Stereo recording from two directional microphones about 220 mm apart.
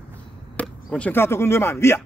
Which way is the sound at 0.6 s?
5° left (ahead or behind).